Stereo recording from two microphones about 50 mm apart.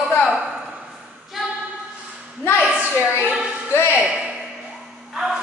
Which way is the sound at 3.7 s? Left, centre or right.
Left.